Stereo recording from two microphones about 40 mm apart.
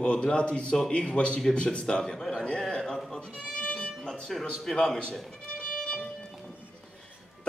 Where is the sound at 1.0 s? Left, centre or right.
Left.